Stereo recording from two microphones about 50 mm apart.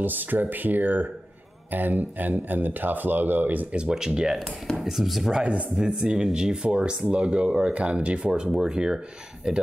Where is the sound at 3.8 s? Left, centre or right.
Centre.